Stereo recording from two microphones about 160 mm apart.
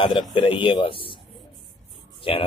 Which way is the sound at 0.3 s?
30° left (ahead or behind).